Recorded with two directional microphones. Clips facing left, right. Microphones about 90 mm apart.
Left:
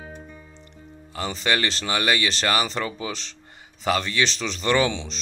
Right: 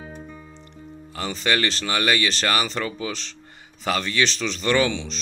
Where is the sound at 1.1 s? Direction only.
20° left (ahead or behind).